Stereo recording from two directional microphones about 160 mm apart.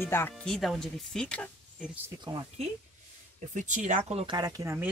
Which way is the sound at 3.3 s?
50° right (ahead or behind).